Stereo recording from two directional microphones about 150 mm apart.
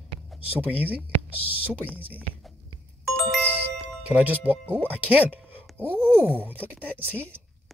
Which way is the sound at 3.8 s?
10° right (ahead or behind).